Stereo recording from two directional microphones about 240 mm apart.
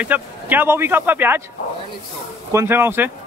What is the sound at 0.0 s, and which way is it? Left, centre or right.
Speech, centre.